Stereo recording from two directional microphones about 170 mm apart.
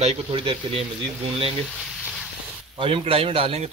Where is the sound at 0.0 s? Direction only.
35° right (ahead or behind).